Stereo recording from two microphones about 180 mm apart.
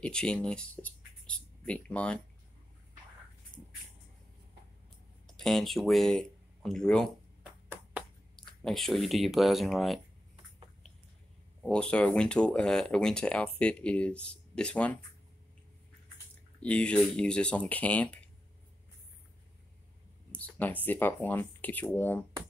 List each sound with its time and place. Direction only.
0.0 s speech: 5° left (ahead or behind)
3.5 s a sound: 25° left (ahead or behind)
5.2 s speech: 5° left (ahead or behind)
8.6 s speech: centre (ahead or behind)
11.6 s speech: 5° left (ahead or behind)
16.5 s speech: 5° left (ahead or behind)
20.3 s speech: 10° left (ahead or behind)